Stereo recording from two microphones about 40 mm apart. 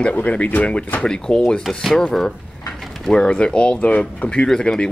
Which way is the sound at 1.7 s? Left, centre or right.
Centre.